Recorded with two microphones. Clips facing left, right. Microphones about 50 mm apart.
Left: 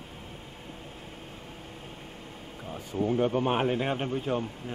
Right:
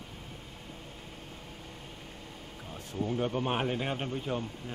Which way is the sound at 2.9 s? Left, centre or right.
Centre.